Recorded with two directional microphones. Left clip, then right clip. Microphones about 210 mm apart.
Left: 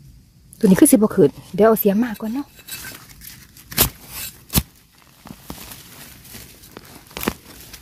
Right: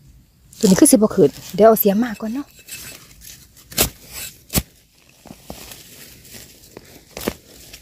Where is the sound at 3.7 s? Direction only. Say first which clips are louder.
Even; 20° left (ahead or behind).